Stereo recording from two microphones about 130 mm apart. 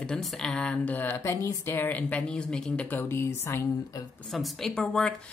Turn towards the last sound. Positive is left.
turn(degrees=5)  # may be behind; listen again after turning